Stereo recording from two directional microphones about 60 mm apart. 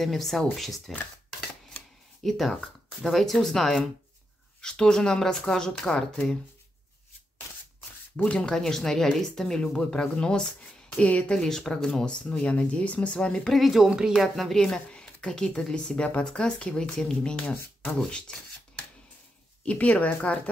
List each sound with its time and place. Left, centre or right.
0.0 s speech: centre
2.2 s speech: centre
8.3 s speech: centre
11.3 s speech: centre
13.5 s speech: centre
19.6 s speech: left